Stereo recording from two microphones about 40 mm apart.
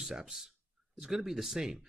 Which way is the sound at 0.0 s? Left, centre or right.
Centre.